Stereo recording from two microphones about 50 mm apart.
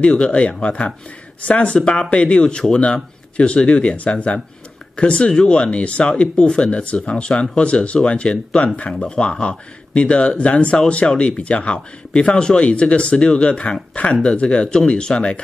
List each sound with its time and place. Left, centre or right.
0.0 s speech: left